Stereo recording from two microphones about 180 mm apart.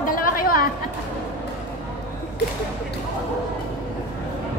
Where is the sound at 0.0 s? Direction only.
50° left (ahead or behind).